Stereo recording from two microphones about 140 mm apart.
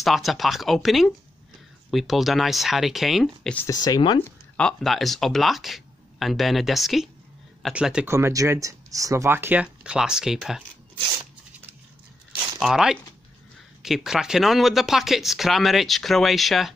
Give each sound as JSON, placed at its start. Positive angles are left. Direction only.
{"t": 0.0, "sound": "speech", "side_deg": 0}
{"t": 3.5, "sound": "speech", "side_deg": 25}
{"t": 4.6, "sound": "speech", "side_deg": 5}
{"t": 8.1, "sound": "speech", "side_deg": -20}
{"t": 12.5, "sound": "speech", "side_deg": 0}